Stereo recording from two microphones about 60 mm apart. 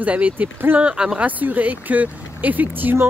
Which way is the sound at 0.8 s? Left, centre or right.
Centre.